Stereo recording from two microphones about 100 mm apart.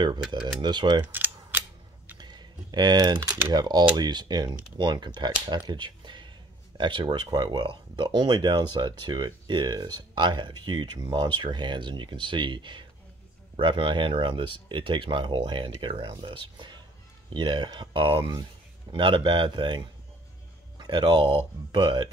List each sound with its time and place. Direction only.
0.0 s speech: 50° right (ahead or behind)
1.0 s cap gun: 20° right (ahead or behind)
2.1 s typing: 45° right (ahead or behind)
3.5 s speech: 45° right (ahead or behind)
5.5 s a sound: 50° right (ahead or behind)
6.8 s speech: 55° right (ahead or behind)